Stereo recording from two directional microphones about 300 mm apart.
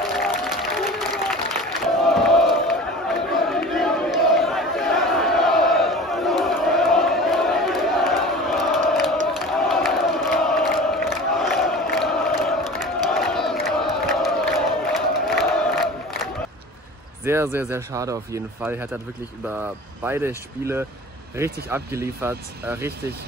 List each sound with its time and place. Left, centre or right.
0.0 s applause: centre
9.3 s crowd: centre
17.2 s speech: centre